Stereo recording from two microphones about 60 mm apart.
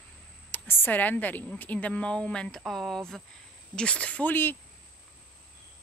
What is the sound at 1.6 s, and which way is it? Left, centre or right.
A woman's voice, left.